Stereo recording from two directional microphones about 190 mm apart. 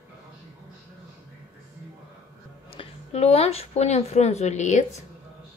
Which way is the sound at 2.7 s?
35° left (ahead or behind).